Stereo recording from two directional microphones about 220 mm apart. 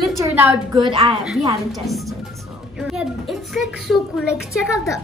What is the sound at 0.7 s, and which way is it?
Speech, 20° right (ahead or behind).